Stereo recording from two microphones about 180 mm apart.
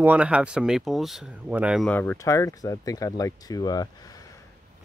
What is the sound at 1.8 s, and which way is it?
Speech, 10° left (ahead or behind).